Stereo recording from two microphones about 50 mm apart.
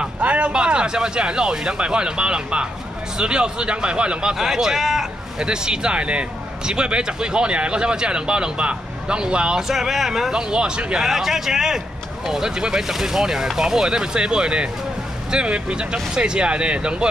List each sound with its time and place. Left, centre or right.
0.2 s speech: right; by 5.0 s centre
5.4 s speech: centre
9.6 s speech: centre
10.5 s speech: centre
11.0 s speech: centre